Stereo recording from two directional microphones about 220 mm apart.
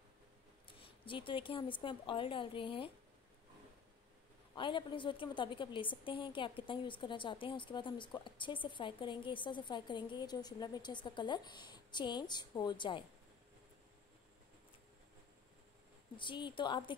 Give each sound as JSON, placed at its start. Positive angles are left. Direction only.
{"t": 0.7, "sound": "a woman's voice", "side_deg": 25}
{"t": 4.6, "sound": "a woman's voice", "side_deg": 20}
{"t": 16.2, "sound": "a woman's voice", "side_deg": 20}